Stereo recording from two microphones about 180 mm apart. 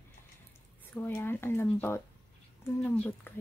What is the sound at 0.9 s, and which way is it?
Speech, 10° left (ahead or behind).